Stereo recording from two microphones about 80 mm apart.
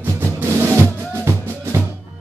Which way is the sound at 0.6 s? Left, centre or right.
Right.